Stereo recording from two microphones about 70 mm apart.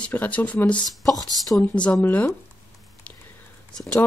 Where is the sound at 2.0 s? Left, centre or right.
Left.